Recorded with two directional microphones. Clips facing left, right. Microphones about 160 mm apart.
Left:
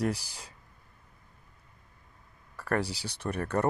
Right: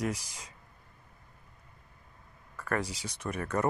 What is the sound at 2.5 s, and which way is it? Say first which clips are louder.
Speech: left 3 dB; 35° left (ahead or behind).